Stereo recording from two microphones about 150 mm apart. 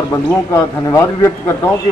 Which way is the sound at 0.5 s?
20° left (ahead or behind).